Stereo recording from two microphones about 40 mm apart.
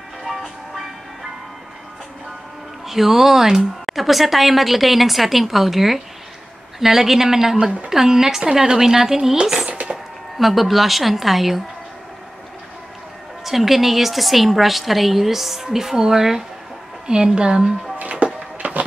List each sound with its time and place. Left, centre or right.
0.2 s music: centre
2.9 s speech: centre
9.7 s a sound: right
10.3 s speech: centre
13.4 s speech: centre
18.1 s a sound: right